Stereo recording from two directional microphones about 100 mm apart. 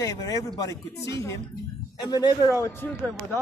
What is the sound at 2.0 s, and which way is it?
Speech, 45° left (ahead or behind).